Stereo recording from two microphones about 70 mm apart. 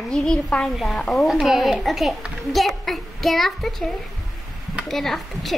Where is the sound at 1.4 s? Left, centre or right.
Centre.